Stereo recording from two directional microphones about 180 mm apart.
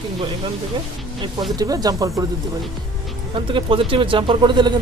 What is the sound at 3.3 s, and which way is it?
Speech, 30° right (ahead or behind).